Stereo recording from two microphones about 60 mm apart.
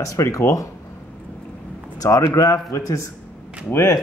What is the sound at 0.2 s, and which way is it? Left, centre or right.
Speech, left.